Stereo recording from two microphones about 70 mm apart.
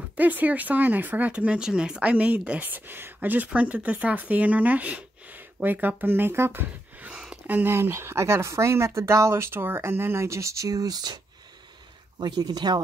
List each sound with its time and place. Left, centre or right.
0.2 s speech: right
7.1 s a sound: centre
7.4 s speech: right
12.2 s speech: right